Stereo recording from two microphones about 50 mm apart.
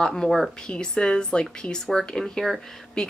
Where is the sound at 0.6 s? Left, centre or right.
Centre.